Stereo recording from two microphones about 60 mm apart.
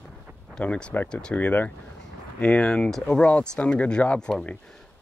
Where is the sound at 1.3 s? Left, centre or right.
Left.